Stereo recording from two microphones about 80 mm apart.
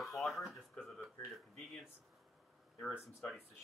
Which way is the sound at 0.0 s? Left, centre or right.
Centre.